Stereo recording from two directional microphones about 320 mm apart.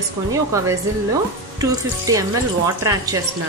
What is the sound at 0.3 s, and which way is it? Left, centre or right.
Speech, centre.